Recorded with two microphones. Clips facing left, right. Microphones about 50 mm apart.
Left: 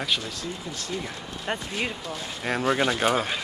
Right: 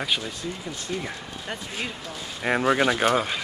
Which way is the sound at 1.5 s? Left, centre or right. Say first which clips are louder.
Left 5 dB; left.